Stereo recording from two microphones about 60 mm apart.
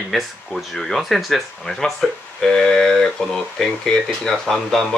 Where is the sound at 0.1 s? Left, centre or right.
Centre.